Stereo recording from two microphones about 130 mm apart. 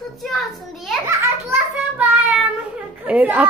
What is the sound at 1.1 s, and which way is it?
A child's voice, 20° right (ahead or behind).